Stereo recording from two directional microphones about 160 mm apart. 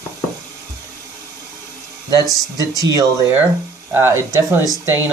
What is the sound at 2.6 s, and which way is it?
Speech, 25° right (ahead or behind).